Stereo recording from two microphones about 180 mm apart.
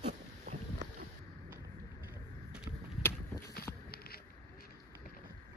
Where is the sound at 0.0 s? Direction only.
40° right (ahead or behind).